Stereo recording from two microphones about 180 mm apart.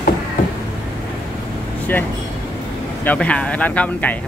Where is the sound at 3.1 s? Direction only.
5° left (ahead or behind).